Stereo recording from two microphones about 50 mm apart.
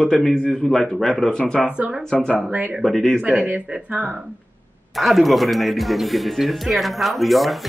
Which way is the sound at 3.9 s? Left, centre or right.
Right.